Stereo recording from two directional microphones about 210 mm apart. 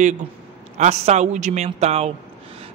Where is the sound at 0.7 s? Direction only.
30° right (ahead or behind).